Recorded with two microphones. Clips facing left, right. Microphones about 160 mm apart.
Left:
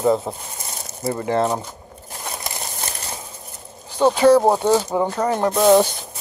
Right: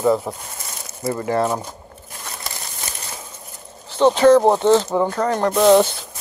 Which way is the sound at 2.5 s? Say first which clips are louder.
Left 2 dB; 20° left (ahead or behind).